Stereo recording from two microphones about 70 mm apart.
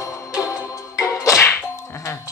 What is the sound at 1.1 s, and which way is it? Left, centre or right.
Whack, left.